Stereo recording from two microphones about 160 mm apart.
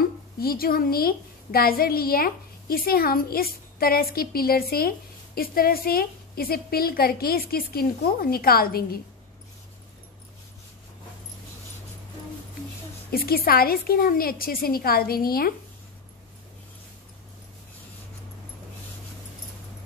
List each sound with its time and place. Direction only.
0.4 s a woman's voice: 70° left (ahead or behind)
13.1 s a woman's voice: 70° left (ahead or behind)